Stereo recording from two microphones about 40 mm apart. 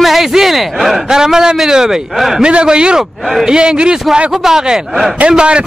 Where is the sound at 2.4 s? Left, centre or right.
Right.